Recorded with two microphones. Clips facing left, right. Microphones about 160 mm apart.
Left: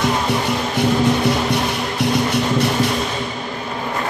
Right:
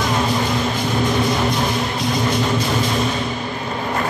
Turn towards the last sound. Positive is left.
turn(degrees=70)  # may be behind; listen again after turning